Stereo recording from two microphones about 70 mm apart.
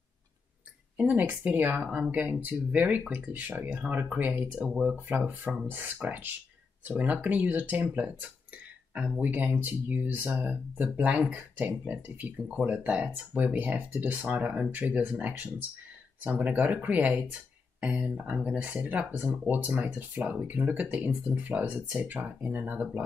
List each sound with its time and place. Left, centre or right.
0.9 s speech: right
9.2 s speech: right